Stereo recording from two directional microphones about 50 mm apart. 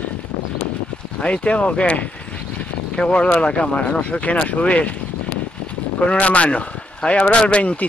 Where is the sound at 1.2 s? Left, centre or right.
Left.